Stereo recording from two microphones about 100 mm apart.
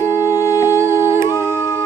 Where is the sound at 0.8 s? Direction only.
25° right (ahead or behind).